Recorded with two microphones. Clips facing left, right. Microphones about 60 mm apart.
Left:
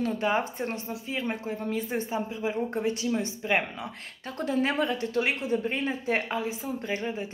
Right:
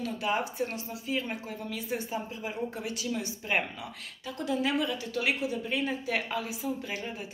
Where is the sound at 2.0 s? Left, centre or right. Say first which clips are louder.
Left 5 dB; left.